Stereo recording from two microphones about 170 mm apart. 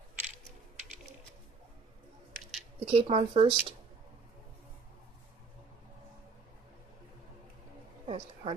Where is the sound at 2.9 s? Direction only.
35° right (ahead or behind).